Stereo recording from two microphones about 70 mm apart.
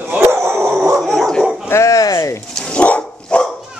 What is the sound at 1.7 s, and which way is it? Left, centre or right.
Bow-wow, left.